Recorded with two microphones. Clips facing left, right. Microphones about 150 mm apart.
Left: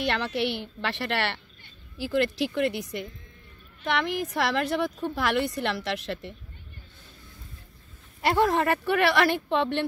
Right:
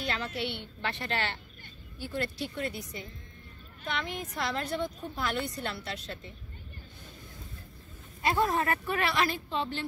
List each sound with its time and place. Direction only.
0.0 s a woman's voice: 85° left
2.0 s a woman's voice: 90° left
8.2 s speech: 80° left